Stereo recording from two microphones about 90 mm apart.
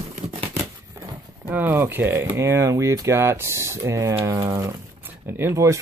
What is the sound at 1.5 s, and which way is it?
Speech, 25° right (ahead or behind).